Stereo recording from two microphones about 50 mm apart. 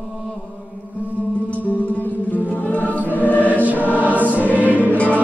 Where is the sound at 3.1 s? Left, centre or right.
Left.